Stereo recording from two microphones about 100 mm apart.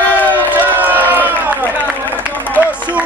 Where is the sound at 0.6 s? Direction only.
20° right (ahead or behind).